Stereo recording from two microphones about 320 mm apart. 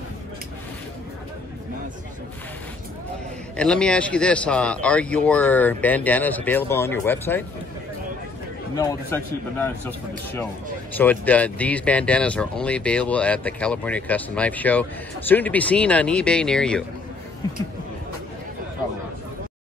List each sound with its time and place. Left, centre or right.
3.5 s speech: centre
8.7 s a man's voice: centre